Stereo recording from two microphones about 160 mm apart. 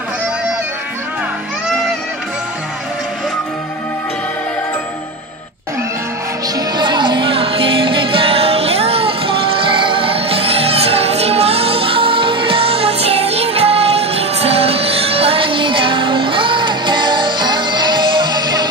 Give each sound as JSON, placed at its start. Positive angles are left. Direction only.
{"t": 6.8, "sound": "music", "side_deg": -30}